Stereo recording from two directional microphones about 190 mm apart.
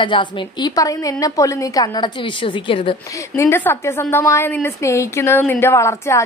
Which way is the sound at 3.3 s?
15° left (ahead or behind).